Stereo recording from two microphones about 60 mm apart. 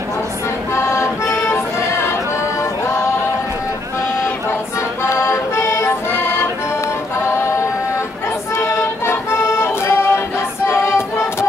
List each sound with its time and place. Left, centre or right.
0.7 s accordion: left
5.0 s music: left
8.5 s music: left